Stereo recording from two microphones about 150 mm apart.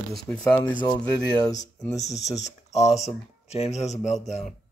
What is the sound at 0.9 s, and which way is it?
Speech, 25° left (ahead or behind).